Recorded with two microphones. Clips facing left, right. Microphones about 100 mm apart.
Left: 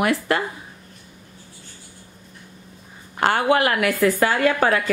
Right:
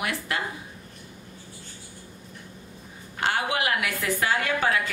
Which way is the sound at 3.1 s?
55° left (ahead or behind).